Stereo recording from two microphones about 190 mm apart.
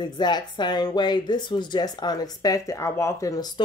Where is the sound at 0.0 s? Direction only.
25° left (ahead or behind).